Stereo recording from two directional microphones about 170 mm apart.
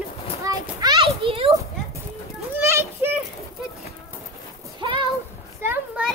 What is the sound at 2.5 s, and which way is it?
Children playing, 15° right (ahead or behind).